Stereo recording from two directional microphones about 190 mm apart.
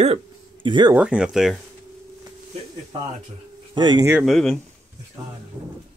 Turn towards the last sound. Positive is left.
turn(degrees=0)  # may be behind; listen again after turning